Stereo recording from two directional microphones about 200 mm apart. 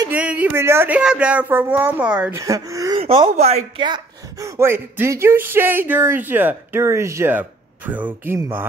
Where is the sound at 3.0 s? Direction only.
30° right (ahead or behind).